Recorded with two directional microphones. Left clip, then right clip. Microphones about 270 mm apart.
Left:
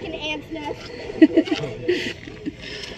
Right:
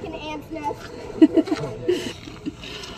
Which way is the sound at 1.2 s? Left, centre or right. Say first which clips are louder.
Left 1 dB; centre.